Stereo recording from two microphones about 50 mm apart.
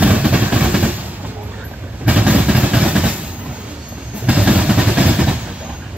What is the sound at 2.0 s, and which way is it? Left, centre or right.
Vehicle, right.